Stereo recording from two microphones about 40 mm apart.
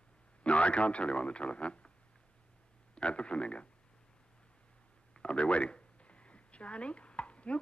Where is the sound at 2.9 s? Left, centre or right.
Left.